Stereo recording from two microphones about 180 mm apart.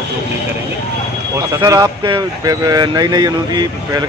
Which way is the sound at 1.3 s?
20° right (ahead or behind).